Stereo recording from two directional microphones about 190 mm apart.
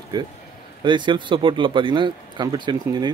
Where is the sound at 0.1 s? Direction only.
25° right (ahead or behind).